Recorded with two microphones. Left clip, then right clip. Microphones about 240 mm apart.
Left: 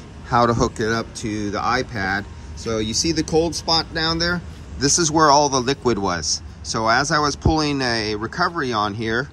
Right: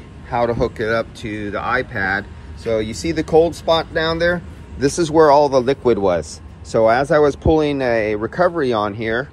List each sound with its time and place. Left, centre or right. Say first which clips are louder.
0.3 s a man's voice: left 1 dB; centre